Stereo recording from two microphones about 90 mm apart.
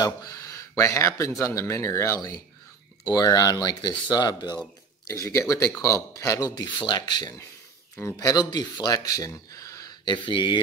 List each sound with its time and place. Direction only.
0.0 s speech: 40° left (ahead or behind)
5.0 s speech: 35° left (ahead or behind)
6.6 s speech: 55° left (ahead or behind)